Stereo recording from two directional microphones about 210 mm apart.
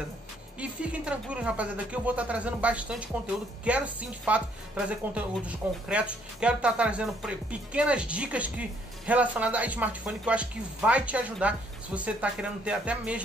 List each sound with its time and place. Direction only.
0.6 s speech: 5° right (ahead or behind)